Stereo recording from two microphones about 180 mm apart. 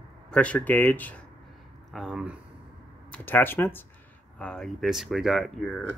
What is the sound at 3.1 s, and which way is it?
Speech, 10° left (ahead or behind).